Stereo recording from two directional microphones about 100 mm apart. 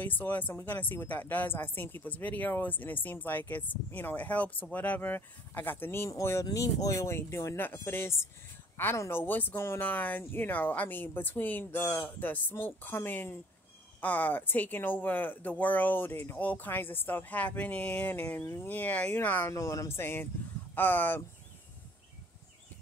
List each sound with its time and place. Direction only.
0.0 s a woman's voice: 20° left (ahead or behind)
18.4 s speech: 30° left (ahead or behind)
18.7 s speech: 15° left (ahead or behind)
19.5 s a woman's voice: 30° left (ahead or behind)